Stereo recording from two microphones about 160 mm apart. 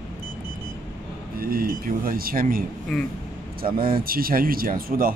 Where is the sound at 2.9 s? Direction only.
5° left (ahead or behind).